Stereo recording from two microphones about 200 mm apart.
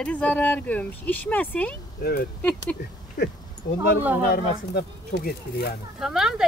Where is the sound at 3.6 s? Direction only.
50° left (ahead or behind).